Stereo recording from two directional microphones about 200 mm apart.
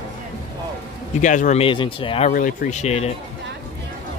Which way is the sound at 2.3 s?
40° left (ahead or behind).